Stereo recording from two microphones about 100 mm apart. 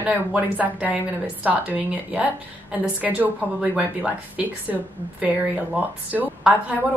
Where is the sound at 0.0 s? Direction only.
15° right (ahead or behind).